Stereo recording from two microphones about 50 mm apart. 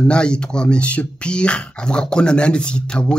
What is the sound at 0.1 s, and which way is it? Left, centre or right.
Speech, centre.